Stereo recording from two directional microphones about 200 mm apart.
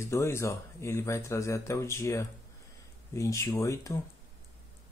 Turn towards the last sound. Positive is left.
turn(degrees=15)  # may be behind; listen again after turning